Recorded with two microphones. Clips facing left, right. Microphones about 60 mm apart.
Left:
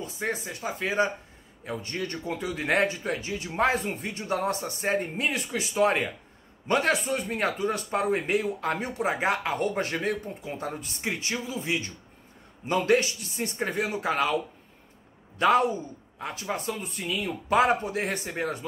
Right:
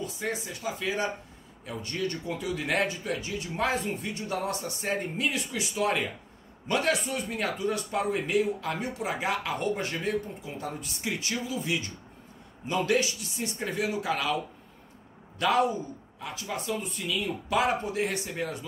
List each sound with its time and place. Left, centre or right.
0.0 s a man's voice: left
15.3 s a man's voice: left